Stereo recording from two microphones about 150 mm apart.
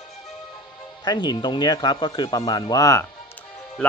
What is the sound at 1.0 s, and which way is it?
Speech, 30° left (ahead or behind).